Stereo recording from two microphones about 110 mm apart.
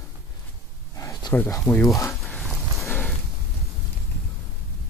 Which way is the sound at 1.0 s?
30° left (ahead or behind).